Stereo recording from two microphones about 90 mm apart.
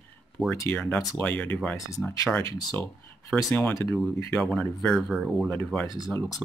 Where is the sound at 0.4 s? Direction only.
5° left (ahead or behind).